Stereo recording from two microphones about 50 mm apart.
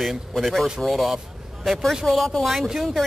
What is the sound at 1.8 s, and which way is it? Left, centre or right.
Speech, centre.